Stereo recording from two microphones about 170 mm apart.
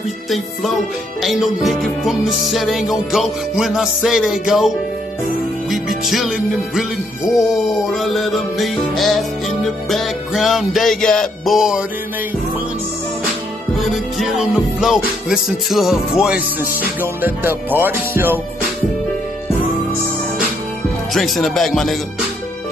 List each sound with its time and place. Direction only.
1.2 s music: centre (ahead or behind)
7.9 s music: centre (ahead or behind)
13.7 s music: centre (ahead or behind)
21.1 s music: centre (ahead or behind)